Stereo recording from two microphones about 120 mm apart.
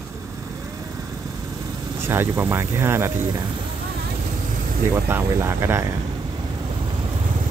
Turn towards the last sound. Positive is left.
turn(degrees=-20)  # may be behind; listen again after turning